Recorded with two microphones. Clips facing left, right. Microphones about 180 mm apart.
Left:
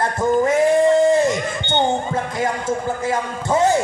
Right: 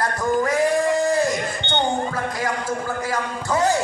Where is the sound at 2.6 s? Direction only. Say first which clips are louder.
Left 4 dB; 25° left (ahead or behind).